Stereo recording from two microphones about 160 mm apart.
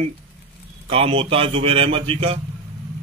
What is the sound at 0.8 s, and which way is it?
Speech, 35° right (ahead or behind).